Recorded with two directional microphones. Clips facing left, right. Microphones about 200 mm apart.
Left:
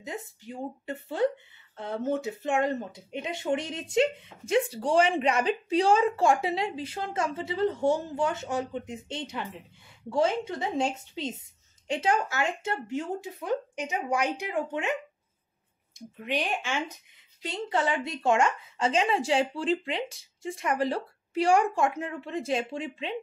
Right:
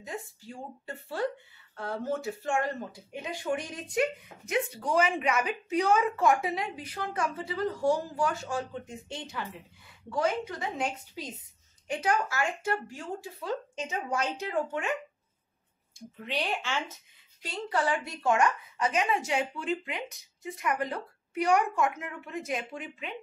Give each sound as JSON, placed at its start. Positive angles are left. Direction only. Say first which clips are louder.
{"t": 0.0, "sound": "speech", "louder": "left 2 dB", "side_deg": 20}
{"t": 16.3, "sound": "speech", "louder": "left 2 dB", "side_deg": 15}